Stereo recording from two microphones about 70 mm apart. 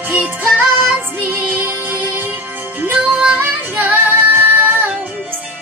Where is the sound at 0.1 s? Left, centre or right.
Right.